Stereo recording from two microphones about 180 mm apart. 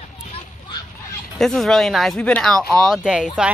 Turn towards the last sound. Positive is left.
turn(degrees=-5)  # may be behind; listen again after turning